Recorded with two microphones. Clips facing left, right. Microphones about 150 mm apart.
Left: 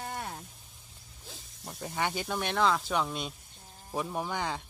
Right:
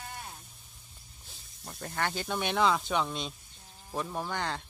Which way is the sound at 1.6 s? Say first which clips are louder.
Left 1 dB; 5° left (ahead or behind).